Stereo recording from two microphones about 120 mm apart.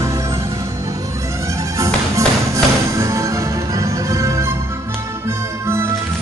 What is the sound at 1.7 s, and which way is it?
Music, 25° right (ahead or behind).